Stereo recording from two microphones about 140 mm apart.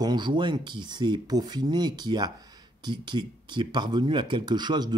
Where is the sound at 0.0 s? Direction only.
30° right (ahead or behind).